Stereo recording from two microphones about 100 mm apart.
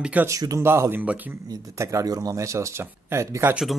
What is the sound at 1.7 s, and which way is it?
Speech, 30° right (ahead or behind).